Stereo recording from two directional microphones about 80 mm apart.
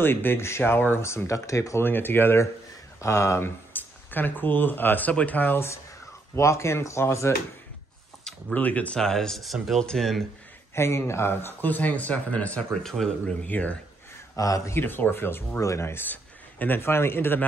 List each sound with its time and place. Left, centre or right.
0.0 s speech: left
1.8 s speech: left
6.3 s speech: left
8.2 s a sound: centre
8.5 s speech: centre
9.0 s speech: centre
10.7 s speech: left; by 12.6 s centre
12.8 s speech: centre
13.5 s speech: centre
14.3 s speech: left
14.8 s speech: left